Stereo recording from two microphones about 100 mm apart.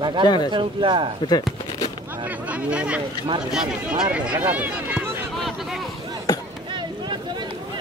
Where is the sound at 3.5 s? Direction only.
5° right (ahead or behind).